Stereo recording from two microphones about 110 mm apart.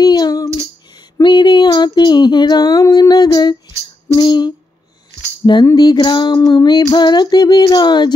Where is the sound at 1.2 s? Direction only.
45° left (ahead or behind).